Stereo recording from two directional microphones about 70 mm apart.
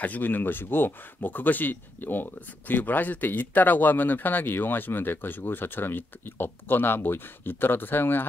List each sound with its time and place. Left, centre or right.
0.0 s speech: left